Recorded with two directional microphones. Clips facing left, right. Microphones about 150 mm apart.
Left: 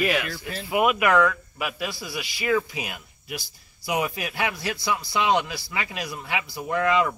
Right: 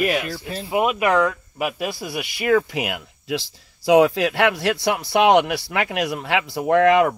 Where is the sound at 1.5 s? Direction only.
45° right (ahead or behind).